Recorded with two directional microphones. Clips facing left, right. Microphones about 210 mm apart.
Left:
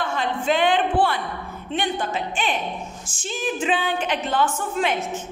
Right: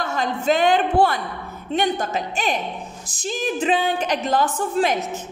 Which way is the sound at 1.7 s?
40° right (ahead or behind).